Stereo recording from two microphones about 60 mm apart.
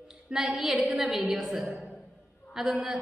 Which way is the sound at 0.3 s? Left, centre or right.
Centre.